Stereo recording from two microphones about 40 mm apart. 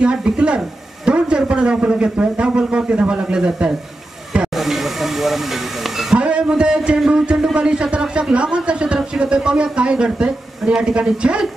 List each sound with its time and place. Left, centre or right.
0.0 s a man's voice: right
4.6 s hiss: centre
6.1 s a sound: right
6.6 s a man's voice: right